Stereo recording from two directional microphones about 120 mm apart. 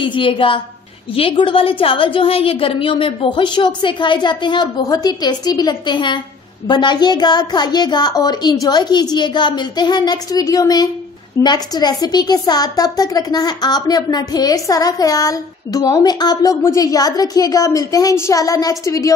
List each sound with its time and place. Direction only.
0.0 s a woman's voice: 45° left (ahead or behind); by 19.1 s 25° left (ahead or behind)